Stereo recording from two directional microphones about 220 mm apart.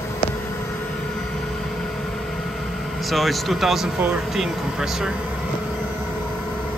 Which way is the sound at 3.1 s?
Centre (ahead or behind).